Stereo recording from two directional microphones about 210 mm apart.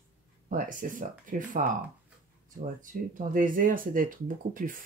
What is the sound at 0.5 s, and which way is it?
Speech, 40° right (ahead or behind).